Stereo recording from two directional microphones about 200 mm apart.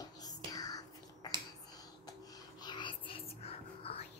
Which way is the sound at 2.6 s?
25° left (ahead or behind).